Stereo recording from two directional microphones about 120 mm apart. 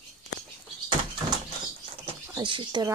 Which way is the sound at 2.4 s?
45° right (ahead or behind).